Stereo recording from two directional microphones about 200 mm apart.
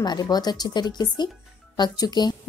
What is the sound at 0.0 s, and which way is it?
Speech, 20° left (ahead or behind).